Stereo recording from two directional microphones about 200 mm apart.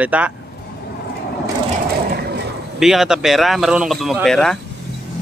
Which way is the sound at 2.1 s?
55° right (ahead or behind).